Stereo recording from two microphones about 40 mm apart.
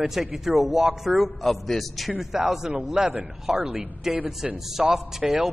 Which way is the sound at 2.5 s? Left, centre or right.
Centre.